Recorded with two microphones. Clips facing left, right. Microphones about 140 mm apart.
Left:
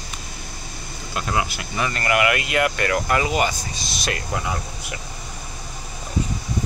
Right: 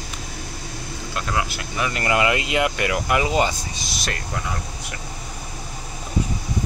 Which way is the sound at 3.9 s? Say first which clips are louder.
Left 3 dB; centre (ahead or behind).